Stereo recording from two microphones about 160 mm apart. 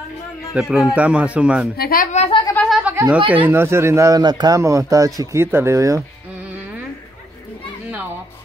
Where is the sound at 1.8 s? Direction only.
65° left (ahead or behind).